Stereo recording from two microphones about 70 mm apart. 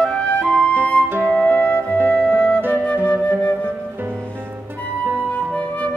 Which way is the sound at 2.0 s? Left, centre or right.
Centre.